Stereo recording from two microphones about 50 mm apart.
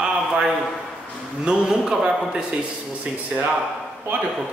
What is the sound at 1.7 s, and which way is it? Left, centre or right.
Speech, centre.